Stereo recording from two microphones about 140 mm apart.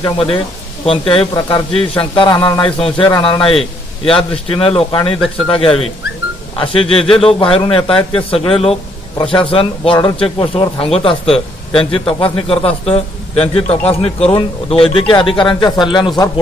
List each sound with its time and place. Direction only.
0.8 s speech: 40° left (ahead or behind)